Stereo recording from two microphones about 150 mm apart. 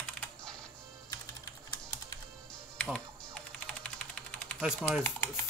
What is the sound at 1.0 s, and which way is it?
Typing, 25° left (ahead or behind).